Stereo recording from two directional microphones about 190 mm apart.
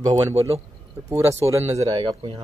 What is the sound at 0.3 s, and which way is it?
Speech, 30° right (ahead or behind).